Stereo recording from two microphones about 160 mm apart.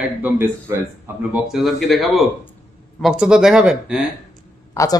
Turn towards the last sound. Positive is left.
turn(degrees=20)  # may be behind; listen again after turning